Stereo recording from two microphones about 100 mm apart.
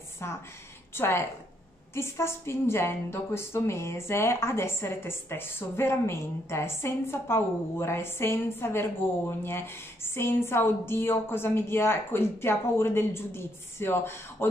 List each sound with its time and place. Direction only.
0.2 s a woman's voice: 25° left (ahead or behind)